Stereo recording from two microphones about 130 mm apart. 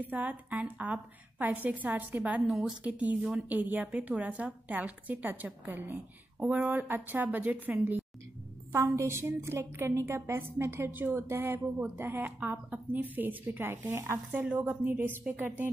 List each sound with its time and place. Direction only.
0.0 s a woman's voice: 10° right (ahead or behind)